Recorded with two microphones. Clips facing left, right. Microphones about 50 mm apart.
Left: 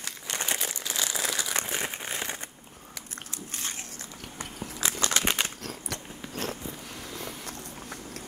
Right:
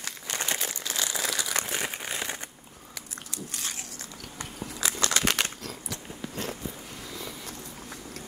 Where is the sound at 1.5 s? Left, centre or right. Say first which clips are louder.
Right 1 dB; left.